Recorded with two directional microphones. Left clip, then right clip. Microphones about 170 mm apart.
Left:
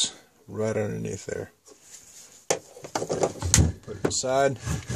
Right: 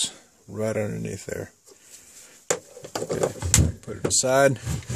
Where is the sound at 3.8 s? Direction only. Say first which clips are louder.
Right 3 dB; 45° right (ahead or behind).